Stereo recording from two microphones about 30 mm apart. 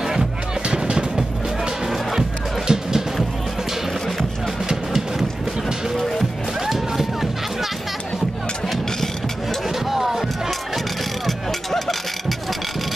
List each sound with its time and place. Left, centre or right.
0.7 s music: right
2.7 s music: right
6.7 s music: centre
9.8 s music: centre
11.2 s vehicle: centre